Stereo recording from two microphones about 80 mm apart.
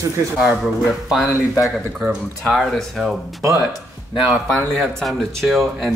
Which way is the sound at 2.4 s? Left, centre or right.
Centre.